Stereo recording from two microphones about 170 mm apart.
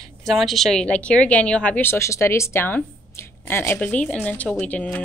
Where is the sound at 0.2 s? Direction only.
Centre (ahead or behind).